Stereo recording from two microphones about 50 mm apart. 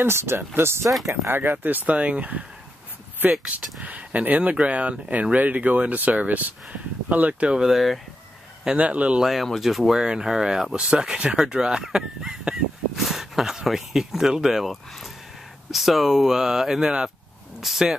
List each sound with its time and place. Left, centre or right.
0.0 s speech: right
1.3 s speech: right
7.5 s speech: centre
8.6 s speech: right
9.2 s speech: centre